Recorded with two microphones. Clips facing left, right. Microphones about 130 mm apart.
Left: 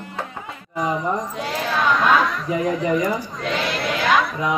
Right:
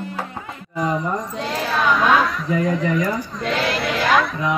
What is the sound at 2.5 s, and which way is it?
Speech, 10° left (ahead or behind).